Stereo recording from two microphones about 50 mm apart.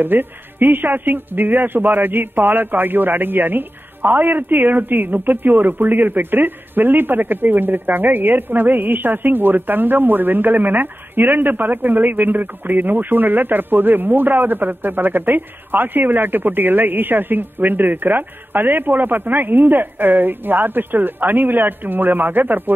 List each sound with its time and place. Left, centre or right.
0.0 s a man's voice: right